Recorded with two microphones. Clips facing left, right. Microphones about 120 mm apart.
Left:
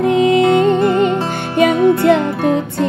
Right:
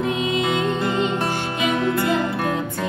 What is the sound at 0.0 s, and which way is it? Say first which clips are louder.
Music: left 10 dB; 65° left (ahead or behind).